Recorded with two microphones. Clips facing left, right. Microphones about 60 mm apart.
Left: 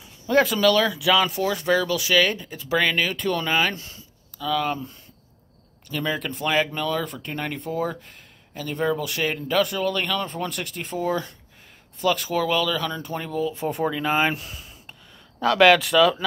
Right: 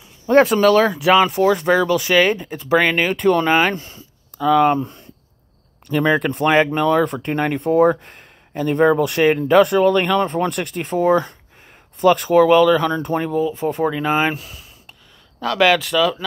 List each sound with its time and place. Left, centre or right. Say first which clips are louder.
0.3 s speech: right 6 dB; right
1.1 s speech: right 9 dB; right
4.7 s speech: right 11 dB; right
5.9 s speech: right 10 dB; right
13.3 s speech: right 6 dB; centre